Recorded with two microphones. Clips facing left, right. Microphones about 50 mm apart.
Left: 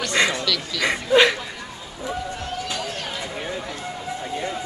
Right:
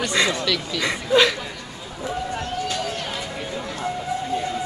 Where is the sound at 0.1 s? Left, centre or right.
Left.